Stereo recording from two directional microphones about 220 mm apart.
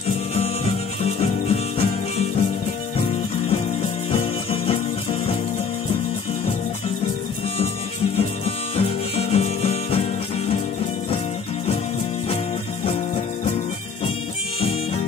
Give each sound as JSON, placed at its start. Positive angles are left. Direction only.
{"t": 0.3, "sound": "music", "side_deg": 25}
{"t": 8.2, "sound": "music", "side_deg": 25}